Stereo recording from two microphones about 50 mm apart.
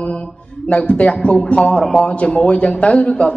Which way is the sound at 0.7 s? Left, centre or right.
Left.